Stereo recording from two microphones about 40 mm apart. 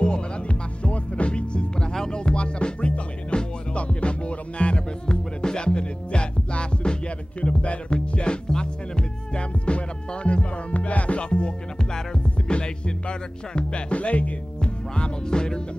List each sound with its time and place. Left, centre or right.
0.0 s music: left
14.6 s music: left